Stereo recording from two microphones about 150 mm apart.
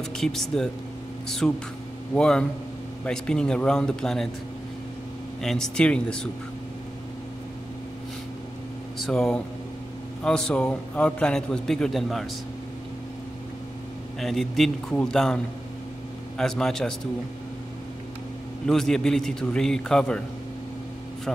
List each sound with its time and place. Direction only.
0.2 s a man's voice: 5° left (ahead or behind)
5.4 s a man's voice: 5° left (ahead or behind)
9.0 s a man's voice: 5° left (ahead or behind)
14.2 s a man's voice: centre (ahead or behind)
18.7 s a man's voice: 5° left (ahead or behind)